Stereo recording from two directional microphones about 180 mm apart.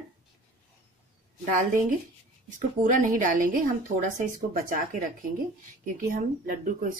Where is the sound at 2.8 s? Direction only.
45° right (ahead or behind).